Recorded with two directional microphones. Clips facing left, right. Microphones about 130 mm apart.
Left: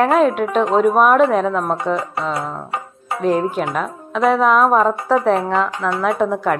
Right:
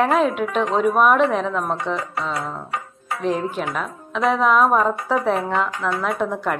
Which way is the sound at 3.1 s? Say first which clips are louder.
Left 4 dB; 30° left (ahead or behind).